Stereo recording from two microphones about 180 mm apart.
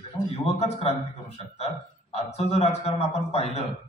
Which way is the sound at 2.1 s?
35° left (ahead or behind).